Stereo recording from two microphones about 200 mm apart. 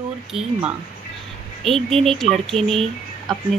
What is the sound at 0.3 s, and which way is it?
Speech, 5° right (ahead or behind).